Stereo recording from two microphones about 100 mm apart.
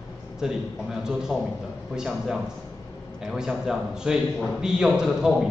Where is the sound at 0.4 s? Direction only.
5° right (ahead or behind).